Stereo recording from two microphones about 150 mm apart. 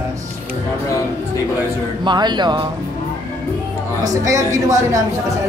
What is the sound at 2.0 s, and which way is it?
Speech, 30° right (ahead or behind).